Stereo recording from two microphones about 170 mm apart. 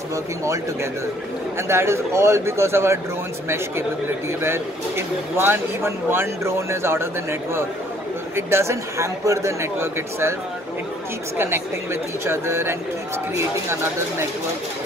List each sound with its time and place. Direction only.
1.7 s speech: 15° right (ahead or behind)
11.3 s speech: 15° right (ahead or behind)